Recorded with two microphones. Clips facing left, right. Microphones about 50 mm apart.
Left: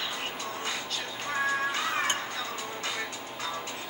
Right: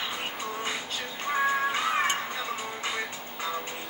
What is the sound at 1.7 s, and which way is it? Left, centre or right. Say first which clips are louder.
Music: right 3 dB; centre.